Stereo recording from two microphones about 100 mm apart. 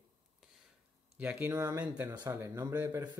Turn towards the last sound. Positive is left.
turn(degrees=-25)  # may be behind; listen again after turning